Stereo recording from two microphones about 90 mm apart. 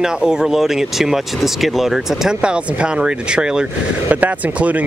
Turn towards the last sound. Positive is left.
turn(degrees=-15)  # may be behind; listen again after turning